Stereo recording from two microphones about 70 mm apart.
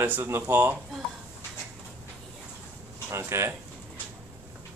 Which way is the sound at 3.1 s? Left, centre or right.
Right.